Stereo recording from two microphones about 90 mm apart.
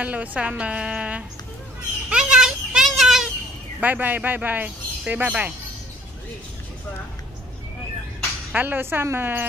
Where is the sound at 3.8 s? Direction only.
20° right (ahead or behind).